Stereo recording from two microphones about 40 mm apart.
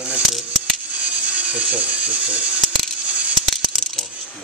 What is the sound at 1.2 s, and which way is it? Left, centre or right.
Speech, right.